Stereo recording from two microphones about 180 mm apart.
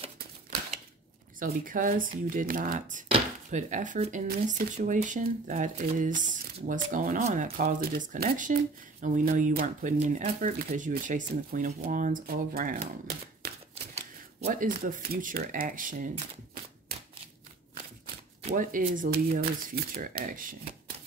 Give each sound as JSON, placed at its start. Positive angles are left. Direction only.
{"t": 1.4, "sound": "speech", "side_deg": -50}
{"t": 13.0, "sound": "typewriter", "side_deg": -55}
{"t": 13.9, "sound": "speech", "side_deg": -40}
{"t": 18.5, "sound": "speech", "side_deg": -50}